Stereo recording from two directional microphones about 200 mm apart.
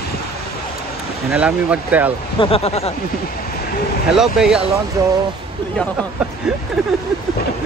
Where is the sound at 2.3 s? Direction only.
30° left (ahead or behind).